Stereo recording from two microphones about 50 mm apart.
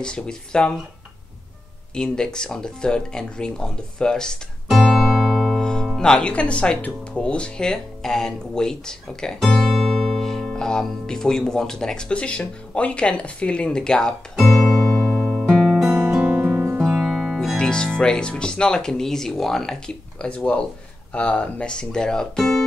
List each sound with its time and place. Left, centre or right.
0.0 s speech: centre
2.0 s speech: centre
4.6 s music: centre
5.6 s music: centre
5.9 s speech: centre
6.2 s speech: left
9.4 s music: centre
12.1 s speech: left
14.7 s music: centre
16.0 s music: centre
16.9 s music: centre
17.6 s speech: centre
20.2 s speech: left